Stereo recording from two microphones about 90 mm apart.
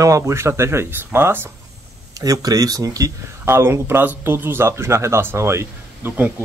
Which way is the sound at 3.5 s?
25° right (ahead or behind).